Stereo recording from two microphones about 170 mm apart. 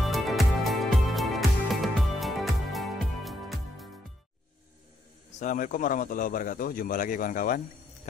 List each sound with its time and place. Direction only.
0.0 s music: centre (ahead or behind)
5.4 s a man's voice: 50° left (ahead or behind)